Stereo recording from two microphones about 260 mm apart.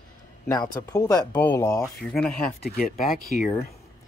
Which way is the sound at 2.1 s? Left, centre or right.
Centre.